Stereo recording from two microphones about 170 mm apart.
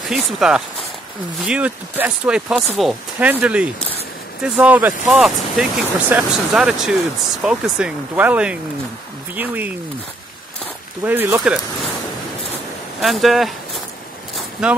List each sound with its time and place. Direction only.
0.1 s speech: centre (ahead or behind)
11.1 s speech: 10° right (ahead or behind)
13.0 s speech: centre (ahead or behind)
14.6 s speech: 5° right (ahead or behind)